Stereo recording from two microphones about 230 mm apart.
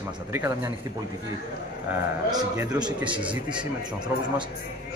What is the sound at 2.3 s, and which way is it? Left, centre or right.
A man's voice, centre.